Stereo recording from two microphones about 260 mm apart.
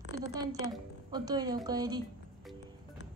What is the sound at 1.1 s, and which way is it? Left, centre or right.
Speech, centre.